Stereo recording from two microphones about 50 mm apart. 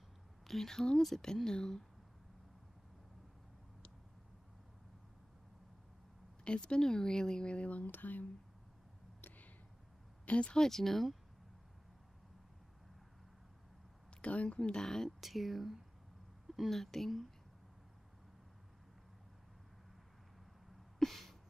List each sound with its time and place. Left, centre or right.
0.5 s speech: centre
6.4 s speech: centre; by 8.3 s left
10.2 s speech: left
10.6 s speech: centre
14.2 s speech: left
14.6 s speech: centre
15.1 s speech: centre
21.0 s a sound: centre